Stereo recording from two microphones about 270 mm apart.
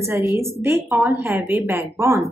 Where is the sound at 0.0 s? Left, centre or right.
Centre.